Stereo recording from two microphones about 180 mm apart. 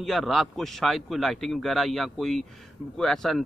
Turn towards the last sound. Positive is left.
turn(degrees=5)  # may be behind; listen again after turning